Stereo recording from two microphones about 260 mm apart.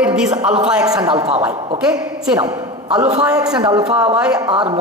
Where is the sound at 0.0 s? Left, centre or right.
Centre.